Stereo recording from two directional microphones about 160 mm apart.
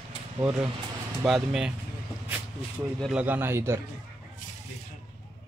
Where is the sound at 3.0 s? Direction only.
10° right (ahead or behind).